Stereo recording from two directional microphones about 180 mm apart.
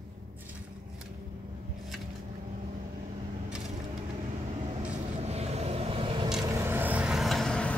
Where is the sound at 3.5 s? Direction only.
5° right (ahead or behind).